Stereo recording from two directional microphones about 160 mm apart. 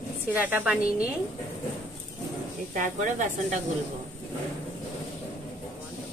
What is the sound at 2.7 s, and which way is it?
Speech, 55° right (ahead or behind).